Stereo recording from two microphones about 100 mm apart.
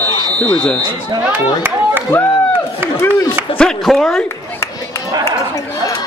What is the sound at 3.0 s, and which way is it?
Speech, 25° left (ahead or behind).